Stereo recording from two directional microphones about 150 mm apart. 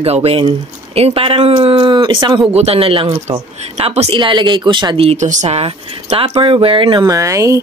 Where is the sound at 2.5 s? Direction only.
40° right (ahead or behind); by 7.6 s 20° right (ahead or behind).